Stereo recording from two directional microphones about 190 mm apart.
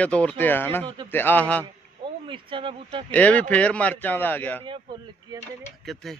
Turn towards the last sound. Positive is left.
turn(degrees=0)  # may be behind; listen again after turning